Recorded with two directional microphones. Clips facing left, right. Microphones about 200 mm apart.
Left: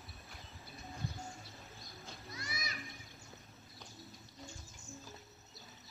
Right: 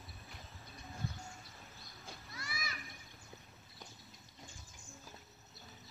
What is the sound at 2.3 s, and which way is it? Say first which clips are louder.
Children playing: left 1 dB; 20° left (ahead or behind).